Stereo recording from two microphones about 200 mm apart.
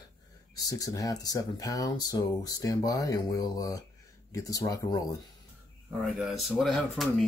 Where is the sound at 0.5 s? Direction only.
15° left (ahead or behind).